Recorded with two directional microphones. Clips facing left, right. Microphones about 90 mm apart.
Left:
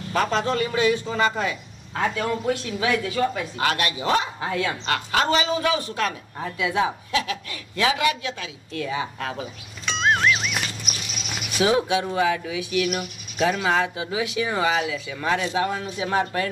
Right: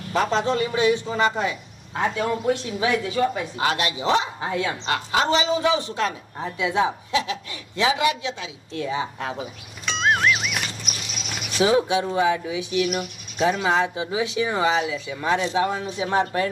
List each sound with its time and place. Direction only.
0.1 s a man's voice: 20° right (ahead or behind)
9.8 s music: centre (ahead or behind)
11.6 s a man's voice: 25° right (ahead or behind)